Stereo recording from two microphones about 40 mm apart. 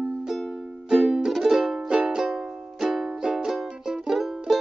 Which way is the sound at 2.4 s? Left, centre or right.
Centre.